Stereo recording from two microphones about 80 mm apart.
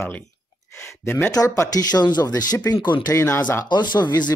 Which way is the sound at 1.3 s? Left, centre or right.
Left.